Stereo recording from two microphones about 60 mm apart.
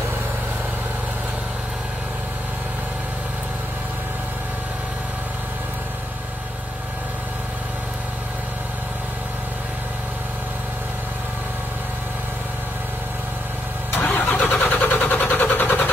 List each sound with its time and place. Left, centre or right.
13.9 s vehicle: left